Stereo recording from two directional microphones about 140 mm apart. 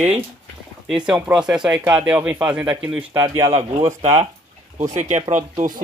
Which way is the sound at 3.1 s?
20° right (ahead or behind).